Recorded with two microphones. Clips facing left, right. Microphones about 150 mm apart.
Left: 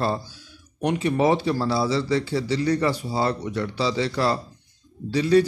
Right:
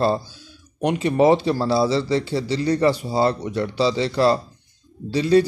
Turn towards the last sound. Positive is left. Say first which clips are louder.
# right 2 dB
turn(degrees=-25)  # may be behind; listen again after turning